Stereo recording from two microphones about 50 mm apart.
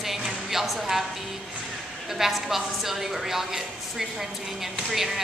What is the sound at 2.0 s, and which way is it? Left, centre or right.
A woman's voice, centre.